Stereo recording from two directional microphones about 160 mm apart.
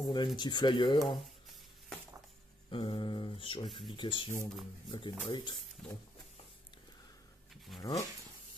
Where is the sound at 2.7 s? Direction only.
30° left (ahead or behind).